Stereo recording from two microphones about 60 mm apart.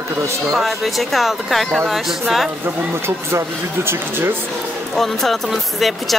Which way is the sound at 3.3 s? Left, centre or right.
Right.